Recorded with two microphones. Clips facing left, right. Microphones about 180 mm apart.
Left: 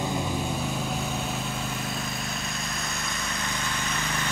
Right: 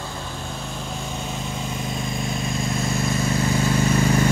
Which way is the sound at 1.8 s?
15° right (ahead or behind).